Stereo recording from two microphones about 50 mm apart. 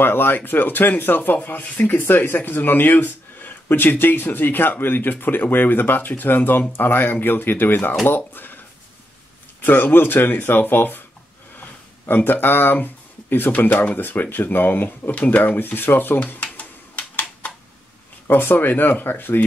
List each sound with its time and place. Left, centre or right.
0.0 s speech: left
9.6 s speech: left
12.1 s speech: left
16.5 s typewriter: left
18.3 s speech: left